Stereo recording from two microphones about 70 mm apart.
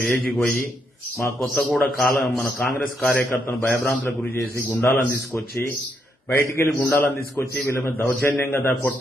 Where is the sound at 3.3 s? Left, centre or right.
Left.